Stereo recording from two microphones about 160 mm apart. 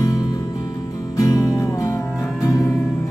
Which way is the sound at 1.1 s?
20° left (ahead or behind).